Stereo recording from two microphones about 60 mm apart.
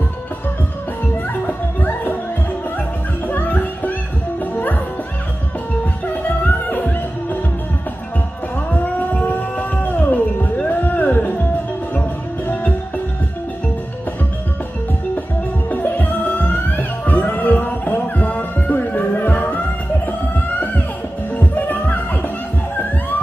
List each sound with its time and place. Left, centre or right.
3.3 s music: left
6.2 s music: left
8.8 s music: left
15.7 s music: left
21.4 s music: left